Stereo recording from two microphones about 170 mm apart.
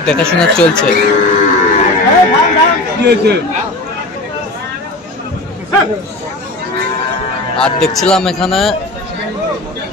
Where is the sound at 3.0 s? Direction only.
75° right (ahead or behind).